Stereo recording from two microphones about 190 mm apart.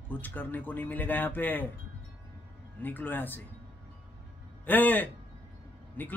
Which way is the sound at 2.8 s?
10° left (ahead or behind).